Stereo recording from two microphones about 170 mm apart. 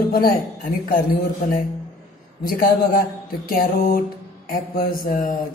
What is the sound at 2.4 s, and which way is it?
Speech, 60° left (ahead or behind).